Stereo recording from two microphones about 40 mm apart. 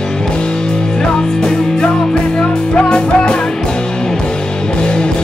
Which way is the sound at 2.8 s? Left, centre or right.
Left.